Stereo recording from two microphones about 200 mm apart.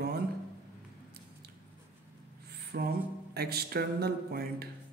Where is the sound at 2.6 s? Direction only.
50° right (ahead or behind).